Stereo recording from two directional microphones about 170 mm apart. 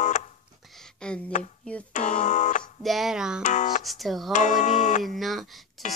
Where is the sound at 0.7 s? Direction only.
5° left (ahead or behind).